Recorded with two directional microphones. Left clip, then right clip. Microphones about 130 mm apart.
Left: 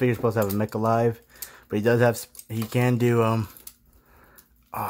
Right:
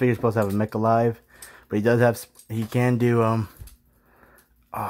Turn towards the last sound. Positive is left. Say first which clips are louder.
# right 1 dB
turn(degrees=-10)  # may be behind; listen again after turning